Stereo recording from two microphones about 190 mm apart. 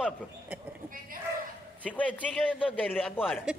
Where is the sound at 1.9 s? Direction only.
5° left (ahead or behind).